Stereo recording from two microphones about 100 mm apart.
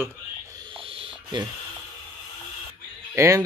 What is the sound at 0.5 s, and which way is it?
Owl, 60° right (ahead or behind).